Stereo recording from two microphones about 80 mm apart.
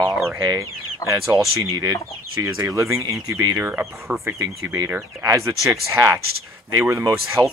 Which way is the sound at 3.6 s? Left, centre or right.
Right.